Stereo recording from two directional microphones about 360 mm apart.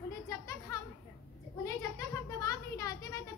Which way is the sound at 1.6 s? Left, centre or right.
Centre.